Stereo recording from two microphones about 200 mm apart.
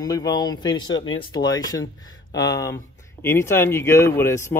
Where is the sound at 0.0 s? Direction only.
20° left (ahead or behind).